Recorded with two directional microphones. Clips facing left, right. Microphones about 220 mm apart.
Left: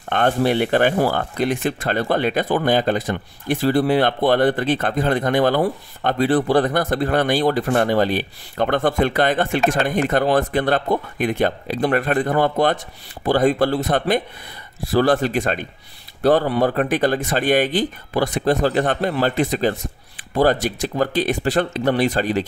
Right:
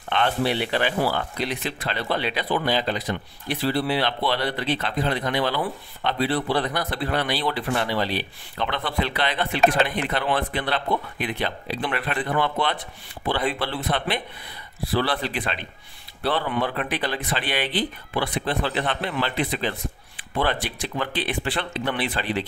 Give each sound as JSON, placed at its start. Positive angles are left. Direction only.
{"t": 0.1, "sound": "speech", "side_deg": 50}